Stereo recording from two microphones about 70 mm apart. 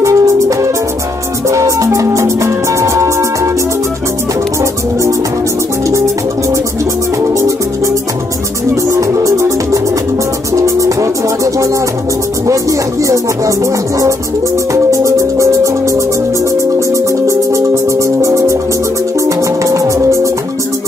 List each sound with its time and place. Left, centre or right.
0.0 s music: right
7.3 s music: right
8.9 s music: right